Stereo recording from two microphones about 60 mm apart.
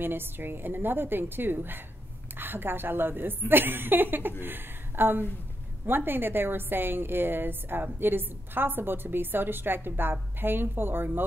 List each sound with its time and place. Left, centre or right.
0.0 s a woman's voice: right